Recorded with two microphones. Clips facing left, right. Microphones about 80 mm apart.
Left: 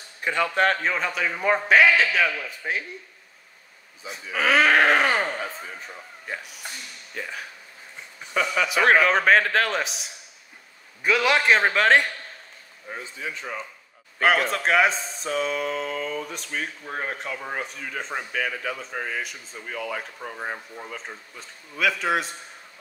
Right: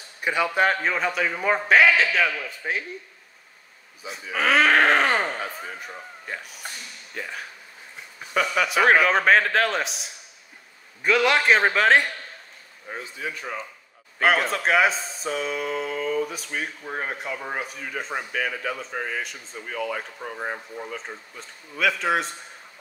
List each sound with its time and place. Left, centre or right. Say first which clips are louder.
0.2 s speech: even; centre
4.1 s speech: even; centre
6.3 s speech: left 1 dB; centre
8.6 s speech: even; centre
14.2 s speech: even; centre